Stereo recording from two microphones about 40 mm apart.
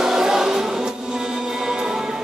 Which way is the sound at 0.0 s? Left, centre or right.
Centre.